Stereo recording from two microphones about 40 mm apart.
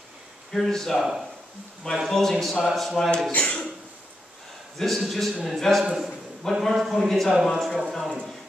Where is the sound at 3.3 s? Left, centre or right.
Left.